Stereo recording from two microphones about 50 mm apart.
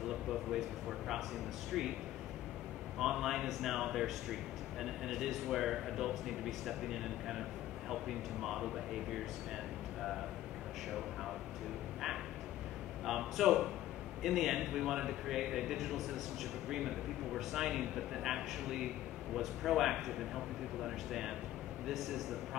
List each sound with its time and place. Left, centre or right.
0.1 s a sound: centre
1.7 s a man's voice: centre
3.0 s a man's voice: centre
13.0 s a man's voice: centre